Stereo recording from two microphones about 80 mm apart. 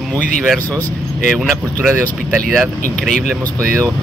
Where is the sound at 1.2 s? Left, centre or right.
Centre.